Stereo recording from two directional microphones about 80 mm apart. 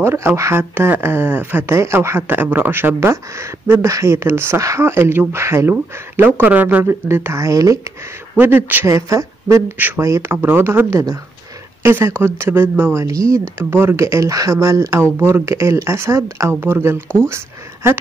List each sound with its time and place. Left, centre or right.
0.0 s speech: right
6.9 s speech: right
8.4 s speech: right
8.8 s speech: right
9.8 s speech: right
10.0 s speech: right
10.3 s speech: right
13.0 s speech: right